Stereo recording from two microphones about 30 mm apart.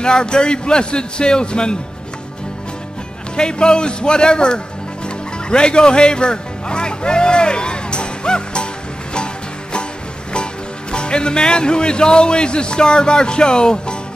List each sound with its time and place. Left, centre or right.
0.0 s a man's voice: left
3.3 s a man's voice: left
5.0 s music: left
10.3 s speech: left